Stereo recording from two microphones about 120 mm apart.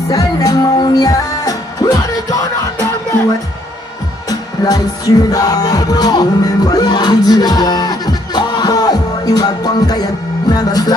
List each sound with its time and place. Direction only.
0.1 s music: 30° left (ahead or behind)
4.3 s music: 30° left (ahead or behind)
10.5 s speech: 35° left (ahead or behind)